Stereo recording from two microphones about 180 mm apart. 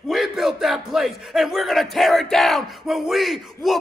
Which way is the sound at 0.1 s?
Centre (ahead or behind).